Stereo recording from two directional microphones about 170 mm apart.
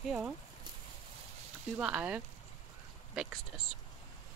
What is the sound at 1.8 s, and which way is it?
Speech, 5° right (ahead or behind).